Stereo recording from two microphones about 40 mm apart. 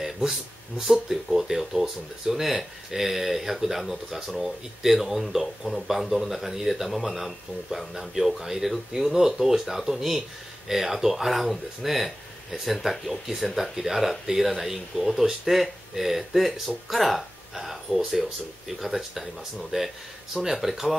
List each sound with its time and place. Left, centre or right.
0.8 s speech: centre
19.7 s speech: centre